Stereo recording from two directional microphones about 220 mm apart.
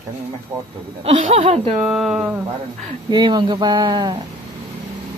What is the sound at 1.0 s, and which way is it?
Speech, 25° right (ahead or behind).